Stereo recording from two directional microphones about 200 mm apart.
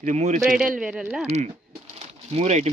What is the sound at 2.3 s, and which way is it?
Speech, 35° right (ahead or behind).